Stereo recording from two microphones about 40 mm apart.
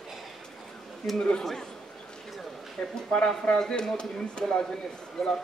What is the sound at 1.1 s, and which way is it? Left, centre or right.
Speech, left.